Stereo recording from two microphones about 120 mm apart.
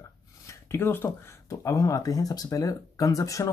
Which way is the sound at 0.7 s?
20° left (ahead or behind).